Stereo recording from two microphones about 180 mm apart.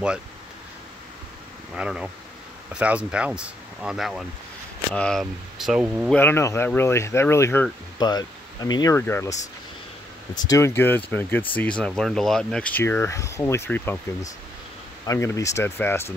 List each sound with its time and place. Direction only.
1.8 s speech: 5° right (ahead or behind)
6.1 s speech: 15° left (ahead or behind)
10.3 s speech: 20° left (ahead or behind)
15.0 s speech: 15° left (ahead or behind)